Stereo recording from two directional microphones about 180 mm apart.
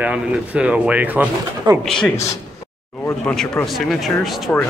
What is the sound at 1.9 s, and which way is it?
Speech, 5° left (ahead or behind).